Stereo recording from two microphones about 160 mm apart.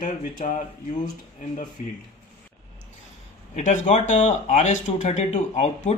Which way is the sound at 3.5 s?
50° left (ahead or behind).